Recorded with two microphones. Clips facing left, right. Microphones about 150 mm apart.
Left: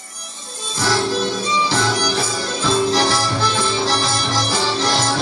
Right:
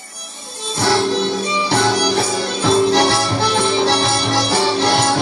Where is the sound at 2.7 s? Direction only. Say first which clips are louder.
Right 4 dB; 60° right (ahead or behind).